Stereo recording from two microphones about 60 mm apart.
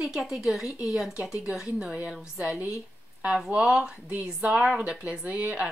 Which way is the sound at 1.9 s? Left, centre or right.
Right.